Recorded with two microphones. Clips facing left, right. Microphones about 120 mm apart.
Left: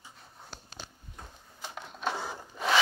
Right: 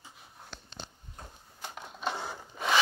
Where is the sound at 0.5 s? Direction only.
40° left (ahead or behind).